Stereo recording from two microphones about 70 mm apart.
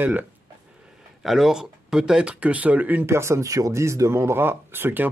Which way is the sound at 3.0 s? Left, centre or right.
Right.